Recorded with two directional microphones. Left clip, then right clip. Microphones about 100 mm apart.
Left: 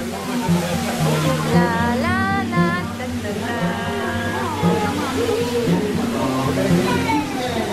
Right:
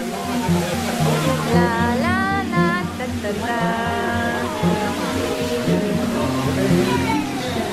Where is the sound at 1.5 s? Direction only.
15° right (ahead or behind).